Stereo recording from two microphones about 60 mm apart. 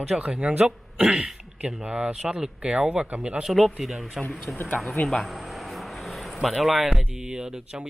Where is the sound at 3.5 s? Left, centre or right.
Centre.